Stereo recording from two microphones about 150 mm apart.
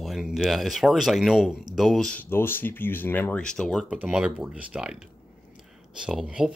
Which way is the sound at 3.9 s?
5° right (ahead or behind).